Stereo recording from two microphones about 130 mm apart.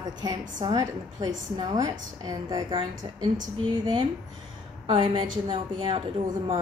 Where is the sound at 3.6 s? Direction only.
40° right (ahead or behind).